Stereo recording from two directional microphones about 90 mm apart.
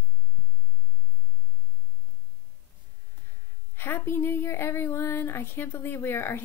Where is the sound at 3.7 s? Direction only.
25° left (ahead or behind).